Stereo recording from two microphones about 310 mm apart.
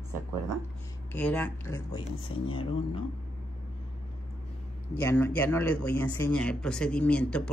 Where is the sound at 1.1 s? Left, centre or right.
Centre.